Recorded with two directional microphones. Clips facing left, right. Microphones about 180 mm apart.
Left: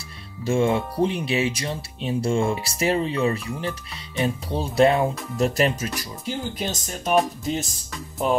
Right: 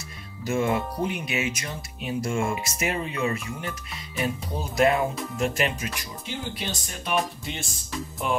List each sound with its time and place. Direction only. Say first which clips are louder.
0.4 s speech: left 4 dB; 30° left (ahead or behind)